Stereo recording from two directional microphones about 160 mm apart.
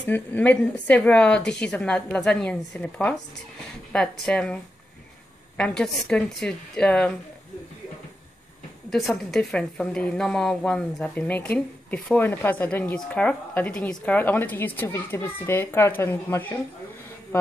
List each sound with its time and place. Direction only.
0.0 s a woman's voice: 10° left (ahead or behind)
5.6 s speech: 5° left (ahead or behind)
8.9 s a woman's voice: centre (ahead or behind)